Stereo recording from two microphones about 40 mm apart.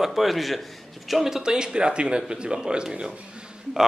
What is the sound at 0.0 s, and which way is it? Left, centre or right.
A man's voice, centre.